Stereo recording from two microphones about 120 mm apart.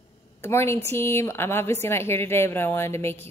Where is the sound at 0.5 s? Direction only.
20° left (ahead or behind).